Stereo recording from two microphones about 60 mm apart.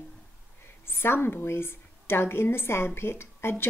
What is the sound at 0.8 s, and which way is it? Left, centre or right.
A woman's voice, left.